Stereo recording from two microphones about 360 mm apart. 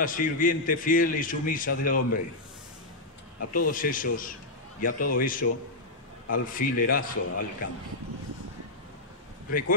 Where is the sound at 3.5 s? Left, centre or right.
Left.